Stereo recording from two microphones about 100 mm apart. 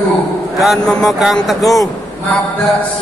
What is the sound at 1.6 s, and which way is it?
Speech, 35° left (ahead or behind).